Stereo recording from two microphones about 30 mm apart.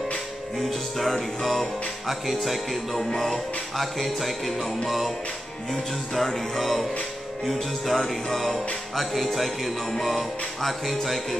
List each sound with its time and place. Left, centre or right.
0.7 s music: centre
3.0 s music: centre